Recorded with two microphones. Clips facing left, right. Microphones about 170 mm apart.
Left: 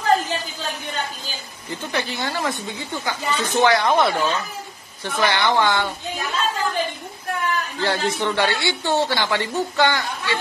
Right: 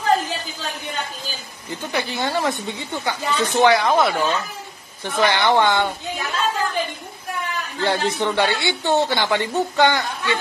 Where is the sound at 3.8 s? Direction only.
Centre (ahead or behind).